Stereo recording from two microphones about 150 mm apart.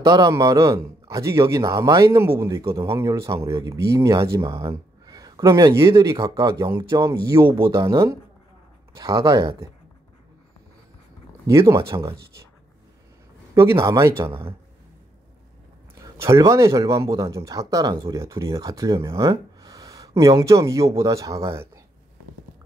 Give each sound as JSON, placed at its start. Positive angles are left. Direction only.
{"t": 0.0, "sound": "speech", "side_deg": -25}
{"t": 11.4, "sound": "speech", "side_deg": -20}
{"t": 13.6, "sound": "speech", "side_deg": -20}
{"t": 15.9, "sound": "speech", "side_deg": -20}